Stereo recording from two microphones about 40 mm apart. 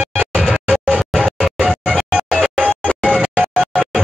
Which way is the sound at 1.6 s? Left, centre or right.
Right.